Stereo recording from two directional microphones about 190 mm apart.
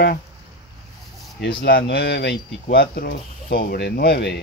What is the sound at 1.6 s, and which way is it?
Speech, 55° left (ahead or behind).